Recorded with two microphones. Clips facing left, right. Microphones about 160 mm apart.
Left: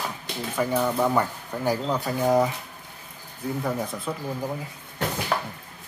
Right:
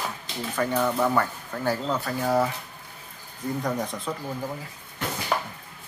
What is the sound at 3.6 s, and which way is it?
Speech, 5° left (ahead or behind).